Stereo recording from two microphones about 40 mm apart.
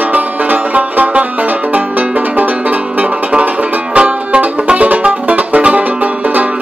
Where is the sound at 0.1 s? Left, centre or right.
Right.